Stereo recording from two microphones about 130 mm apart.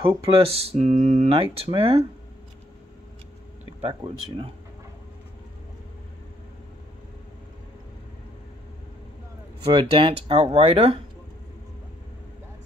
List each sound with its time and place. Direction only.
0.0 s speech: 45° right (ahead or behind); by 1.3 s 65° right (ahead or behind)
1.3 s speech: 45° right (ahead or behind)
3.8 s speech: 45° right (ahead or behind)
9.7 s speech: 40° right (ahead or behind)